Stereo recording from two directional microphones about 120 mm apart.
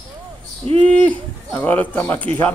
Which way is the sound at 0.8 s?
10° left (ahead or behind).